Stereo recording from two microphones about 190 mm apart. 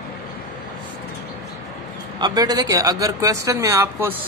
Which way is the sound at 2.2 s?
20° right (ahead or behind).